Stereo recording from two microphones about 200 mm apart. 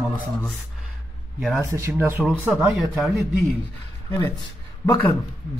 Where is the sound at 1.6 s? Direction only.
15° right (ahead or behind).